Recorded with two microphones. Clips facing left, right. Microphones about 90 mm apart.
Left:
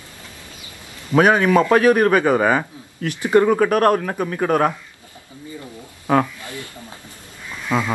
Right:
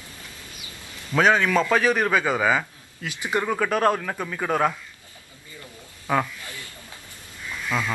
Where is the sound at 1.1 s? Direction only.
15° left (ahead or behind).